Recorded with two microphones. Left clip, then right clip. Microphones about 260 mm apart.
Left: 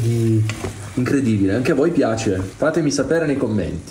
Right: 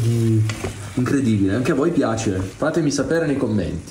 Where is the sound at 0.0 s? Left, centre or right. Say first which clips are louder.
Left 2 dB; centre.